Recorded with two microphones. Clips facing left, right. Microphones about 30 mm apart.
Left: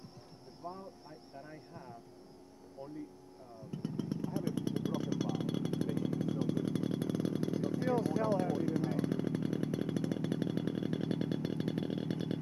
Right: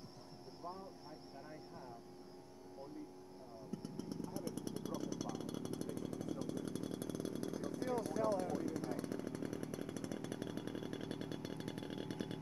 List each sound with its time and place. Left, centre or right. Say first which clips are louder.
0.6 s speech: left 4 dB; centre
3.7 s vehicle: left 8 dB; left
5.4 s a sound: left 8 dB; left